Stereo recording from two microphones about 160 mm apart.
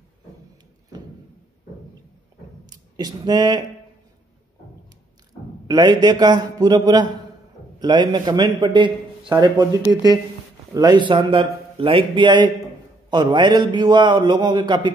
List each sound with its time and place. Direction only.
2.7 s speech: 25° right (ahead or behind)
5.7 s a man's voice: 25° right (ahead or behind)